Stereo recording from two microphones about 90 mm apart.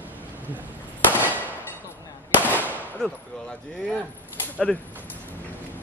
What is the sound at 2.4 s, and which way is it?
Firecracker, 20° left (ahead or behind).